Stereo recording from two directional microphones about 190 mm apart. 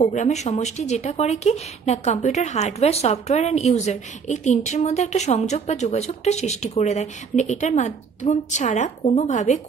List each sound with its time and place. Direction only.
0.0 s a woman's voice: 40° left (ahead or behind)